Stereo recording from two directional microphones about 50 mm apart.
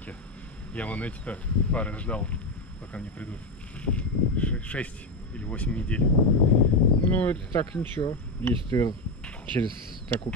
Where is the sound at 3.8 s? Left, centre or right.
Left.